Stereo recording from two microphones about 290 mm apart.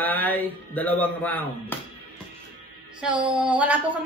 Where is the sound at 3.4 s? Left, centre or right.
Centre.